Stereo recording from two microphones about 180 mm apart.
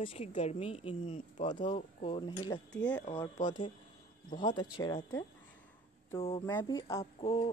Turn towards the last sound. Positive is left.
turn(degrees=30)  # may be behind; listen again after turning